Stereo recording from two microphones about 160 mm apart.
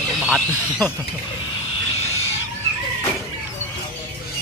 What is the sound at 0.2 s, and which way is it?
Speech, centre (ahead or behind).